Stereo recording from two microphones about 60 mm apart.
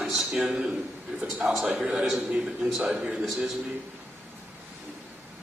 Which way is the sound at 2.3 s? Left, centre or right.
Centre.